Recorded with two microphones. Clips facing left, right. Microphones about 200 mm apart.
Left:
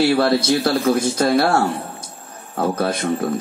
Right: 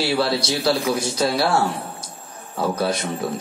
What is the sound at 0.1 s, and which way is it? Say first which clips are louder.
A man's voice: left 5 dB; 55° left (ahead or behind).